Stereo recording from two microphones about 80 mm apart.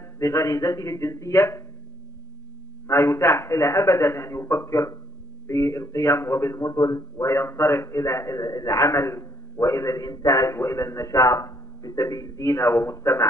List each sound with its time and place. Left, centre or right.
0.2 s a man's voice: left
2.9 s a man's voice: left